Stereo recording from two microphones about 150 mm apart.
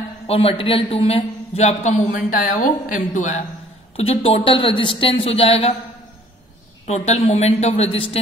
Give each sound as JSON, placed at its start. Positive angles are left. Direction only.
{"t": 0.3, "sound": "a man's voice", "side_deg": 40}
{"t": 3.9, "sound": "speech", "side_deg": 40}
{"t": 6.9, "sound": "a man's voice", "side_deg": 45}